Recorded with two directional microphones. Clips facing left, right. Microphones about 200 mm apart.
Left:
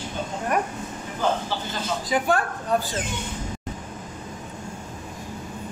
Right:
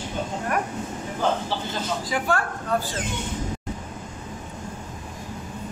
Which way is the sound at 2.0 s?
20° left (ahead or behind).